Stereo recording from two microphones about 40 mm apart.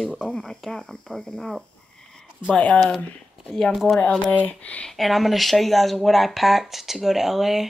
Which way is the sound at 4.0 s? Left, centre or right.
Left.